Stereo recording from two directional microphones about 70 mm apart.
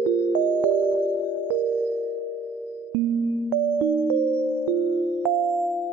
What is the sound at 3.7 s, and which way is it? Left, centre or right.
Music, left.